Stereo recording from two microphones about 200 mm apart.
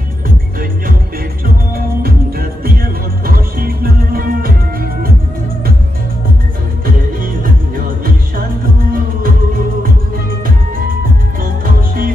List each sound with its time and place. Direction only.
2.0 s music: 45° right (ahead or behind)
11.4 s music: 45° right (ahead or behind)